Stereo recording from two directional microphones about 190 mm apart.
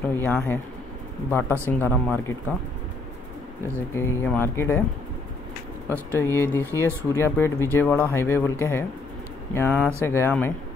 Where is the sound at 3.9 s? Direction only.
10° left (ahead or behind).